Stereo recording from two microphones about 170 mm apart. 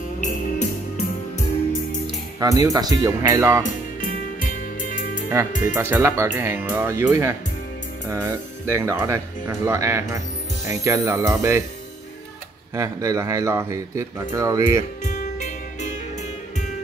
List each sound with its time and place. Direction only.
0.2 s music: 45° left (ahead or behind)
2.6 s speech: 20° right (ahead or behind)
3.6 s music: 50° left (ahead or behind)
5.5 s speech: 50° left (ahead or behind)
5.8 s speech: 15° right (ahead or behind)
12.7 s speech: 20° right (ahead or behind)
15.0 s music: 45° left (ahead or behind)